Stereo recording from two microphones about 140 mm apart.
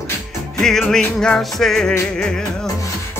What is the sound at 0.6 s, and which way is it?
Music, 5° left (ahead or behind).